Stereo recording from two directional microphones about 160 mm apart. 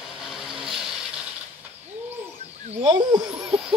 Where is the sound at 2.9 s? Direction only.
25° right (ahead or behind).